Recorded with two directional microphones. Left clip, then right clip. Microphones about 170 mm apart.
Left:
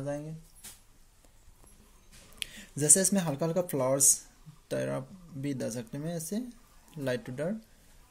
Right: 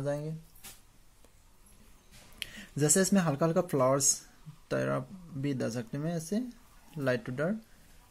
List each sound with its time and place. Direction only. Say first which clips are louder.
2.3 s speech: even; 30° right (ahead or behind)